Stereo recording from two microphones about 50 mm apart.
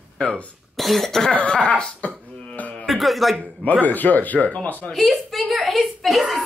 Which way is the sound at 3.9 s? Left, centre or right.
Left.